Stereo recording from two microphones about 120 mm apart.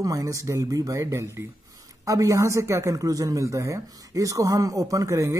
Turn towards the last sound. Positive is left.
turn(degrees=-25)  # may be behind; listen again after turning